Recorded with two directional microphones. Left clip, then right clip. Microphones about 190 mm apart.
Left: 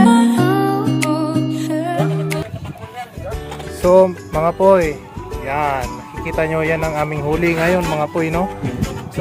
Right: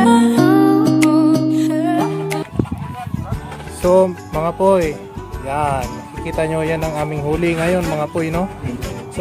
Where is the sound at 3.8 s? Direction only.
Centre (ahead or behind).